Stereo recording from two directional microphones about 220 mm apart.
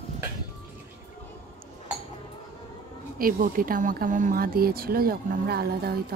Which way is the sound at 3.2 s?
40° right (ahead or behind).